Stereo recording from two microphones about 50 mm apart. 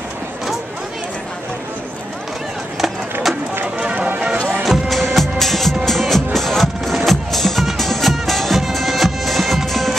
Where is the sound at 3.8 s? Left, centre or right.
Right.